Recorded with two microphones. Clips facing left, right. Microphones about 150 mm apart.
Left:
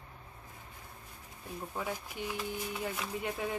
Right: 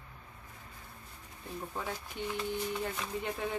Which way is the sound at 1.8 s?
10° left (ahead or behind).